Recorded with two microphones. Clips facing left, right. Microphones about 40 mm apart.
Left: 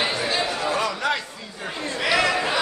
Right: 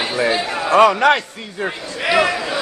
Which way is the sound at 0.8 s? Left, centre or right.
Right.